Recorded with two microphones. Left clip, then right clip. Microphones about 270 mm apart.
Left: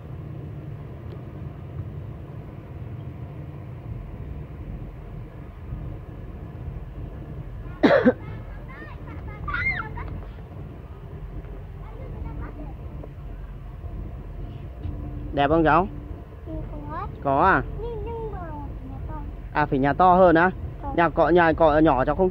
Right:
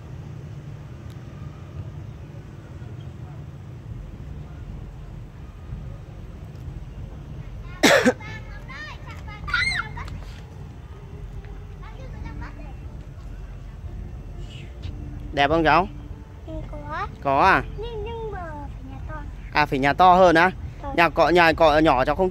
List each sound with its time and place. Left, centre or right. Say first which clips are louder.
7.8 s cough: right 1 dB; centre
9.5 s fowl: right 3 dB; right
15.3 s speech: right 1 dB; centre
17.2 s speech: right 2 dB; centre
19.5 s speech: right 2 dB; centre